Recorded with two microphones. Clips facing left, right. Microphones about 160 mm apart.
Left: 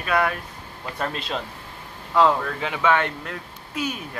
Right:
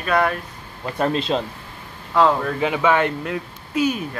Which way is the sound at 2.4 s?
15° right (ahead or behind).